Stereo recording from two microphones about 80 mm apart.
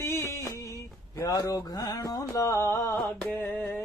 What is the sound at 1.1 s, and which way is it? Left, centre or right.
Speech, left.